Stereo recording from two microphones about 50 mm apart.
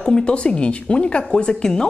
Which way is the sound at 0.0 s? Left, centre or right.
Centre.